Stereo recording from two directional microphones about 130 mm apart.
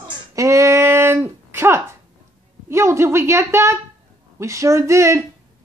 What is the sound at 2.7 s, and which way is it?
A woman's voice, 20° right (ahead or behind).